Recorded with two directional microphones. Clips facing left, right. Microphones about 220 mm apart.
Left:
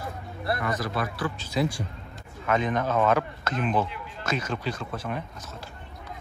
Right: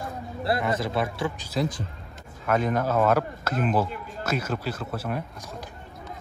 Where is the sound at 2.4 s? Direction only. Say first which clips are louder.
Right 1 dB; 5° right (ahead or behind).